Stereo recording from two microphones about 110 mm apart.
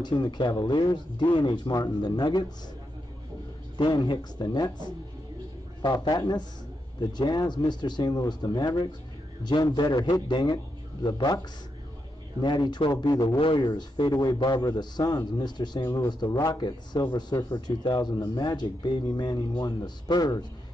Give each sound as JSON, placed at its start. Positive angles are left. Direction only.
{"t": 0.0, "sound": "a man's voice", "side_deg": 40}
{"t": 3.7, "sound": "a man's voice", "side_deg": 40}
{"t": 6.0, "sound": "a man's voice", "side_deg": 40}
{"t": 13.4, "sound": "a man's voice", "side_deg": 50}